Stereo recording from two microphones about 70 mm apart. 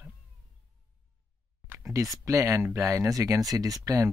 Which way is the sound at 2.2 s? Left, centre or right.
Right.